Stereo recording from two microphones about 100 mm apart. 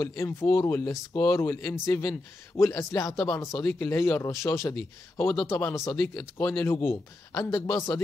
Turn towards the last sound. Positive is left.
turn(degrees=35)  # may be behind; listen again after turning